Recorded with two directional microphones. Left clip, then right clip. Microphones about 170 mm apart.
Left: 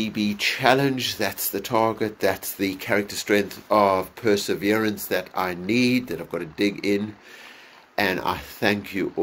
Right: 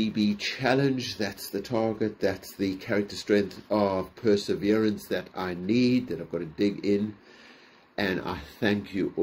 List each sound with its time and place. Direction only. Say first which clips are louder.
0.3 s speech: left 10 dB; 10° right (ahead or behind)